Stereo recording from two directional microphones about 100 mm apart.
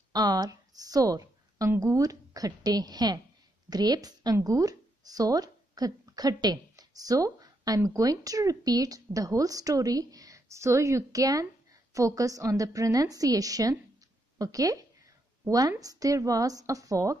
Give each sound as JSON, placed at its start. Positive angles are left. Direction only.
{"t": 0.1, "sound": "a woman's voice", "side_deg": -40}
{"t": 14.4, "sound": "a sound", "side_deg": -35}
{"t": 15.8, "sound": "a woman's voice", "side_deg": -35}